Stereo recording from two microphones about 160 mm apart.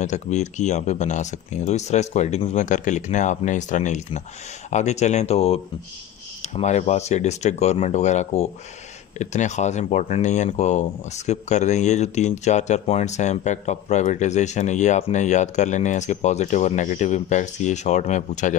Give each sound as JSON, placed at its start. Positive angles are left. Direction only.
{"t": 0.0, "sound": "speech", "side_deg": 45}